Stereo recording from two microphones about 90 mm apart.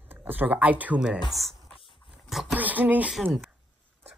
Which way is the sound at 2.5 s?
20° right (ahead or behind).